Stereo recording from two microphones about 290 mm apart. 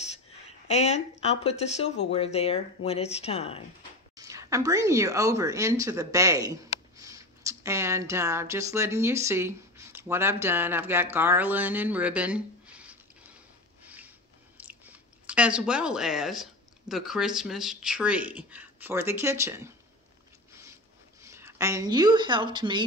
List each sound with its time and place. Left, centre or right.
0.7 s speech: left
4.2 s a woman's voice: centre
13.8 s a sound: centre
14.6 s chewing: centre
16.9 s speech: centre
21.2 s a woman's voice: centre